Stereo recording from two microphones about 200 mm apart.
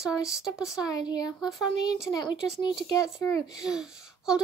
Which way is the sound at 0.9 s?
20° left (ahead or behind).